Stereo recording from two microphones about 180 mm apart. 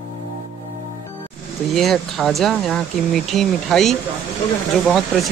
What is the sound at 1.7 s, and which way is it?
Speech, centre (ahead or behind).